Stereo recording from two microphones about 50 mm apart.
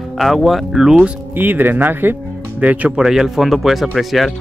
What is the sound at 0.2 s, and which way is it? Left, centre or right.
Speech, centre.